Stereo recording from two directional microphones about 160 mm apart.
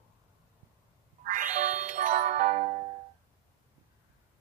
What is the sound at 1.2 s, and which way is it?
Music, 50° right (ahead or behind).